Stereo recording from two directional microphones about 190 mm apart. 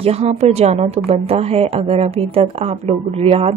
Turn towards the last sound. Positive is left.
turn(degrees=-30)  # may be behind; listen again after turning